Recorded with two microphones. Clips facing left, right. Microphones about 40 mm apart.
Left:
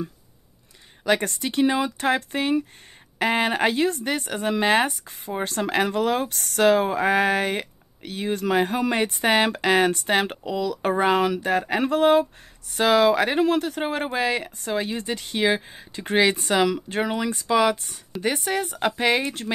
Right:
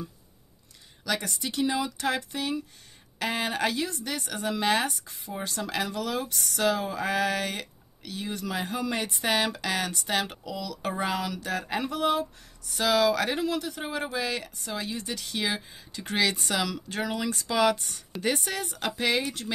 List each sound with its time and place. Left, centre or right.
1.0 s speech: left